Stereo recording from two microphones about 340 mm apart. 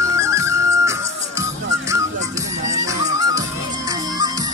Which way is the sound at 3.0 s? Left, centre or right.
Centre.